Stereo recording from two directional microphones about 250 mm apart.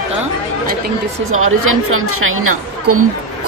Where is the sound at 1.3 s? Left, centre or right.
Right.